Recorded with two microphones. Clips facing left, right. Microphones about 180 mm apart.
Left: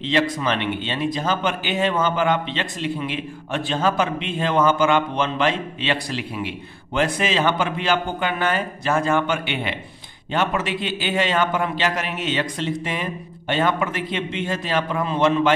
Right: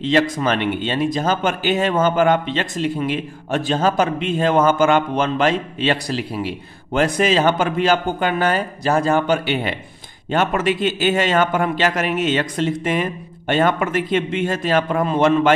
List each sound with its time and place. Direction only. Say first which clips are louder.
0.0 s speech: right 4 dB; 45° right (ahead or behind)